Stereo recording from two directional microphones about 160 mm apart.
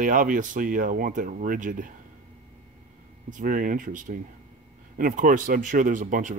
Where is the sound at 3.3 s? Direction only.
60° right (ahead or behind).